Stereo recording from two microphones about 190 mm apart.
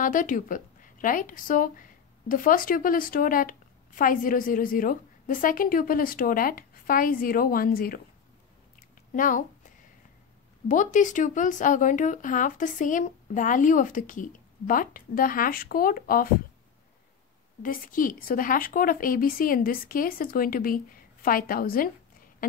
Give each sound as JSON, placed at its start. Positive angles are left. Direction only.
{"t": 0.0, "sound": "a woman's voice", "side_deg": 45}
{"t": 8.7, "sound": "a sound", "side_deg": 45}
{"t": 10.7, "sound": "speech", "side_deg": 40}
{"t": 17.6, "sound": "speech", "side_deg": 45}